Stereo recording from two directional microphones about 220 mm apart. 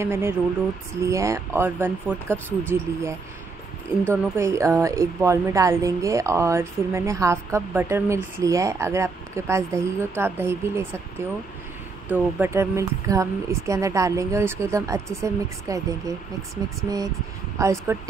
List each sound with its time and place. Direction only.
0.0 s a woman's voice: 10° right (ahead or behind)
12.1 s a woman's voice: 10° right (ahead or behind)
17.6 s a woman's voice: 15° right (ahead or behind)